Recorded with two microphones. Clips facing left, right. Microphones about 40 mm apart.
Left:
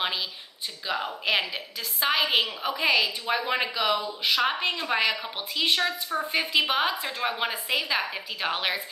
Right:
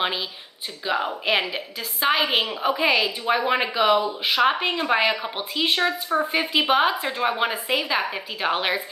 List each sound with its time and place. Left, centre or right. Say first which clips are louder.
0.8 s a woman's voice: right 4 dB; centre